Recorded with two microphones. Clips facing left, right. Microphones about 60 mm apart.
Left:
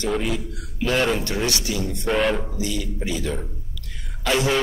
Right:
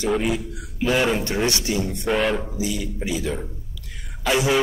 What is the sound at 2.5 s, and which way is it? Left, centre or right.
Speech, centre.